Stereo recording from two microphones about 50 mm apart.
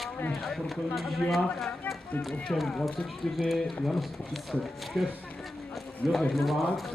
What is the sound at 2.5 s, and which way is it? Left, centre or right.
Speech, left.